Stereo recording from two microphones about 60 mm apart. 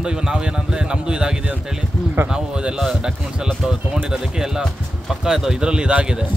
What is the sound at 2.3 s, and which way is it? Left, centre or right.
Speech, centre.